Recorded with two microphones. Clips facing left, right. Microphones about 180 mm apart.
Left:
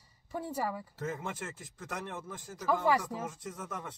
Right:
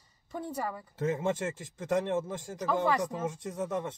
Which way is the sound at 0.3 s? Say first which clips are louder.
Even; 10° left (ahead or behind).